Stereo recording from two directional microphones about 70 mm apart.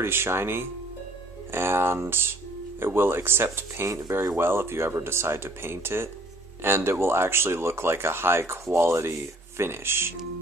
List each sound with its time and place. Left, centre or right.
0.0 s speech: right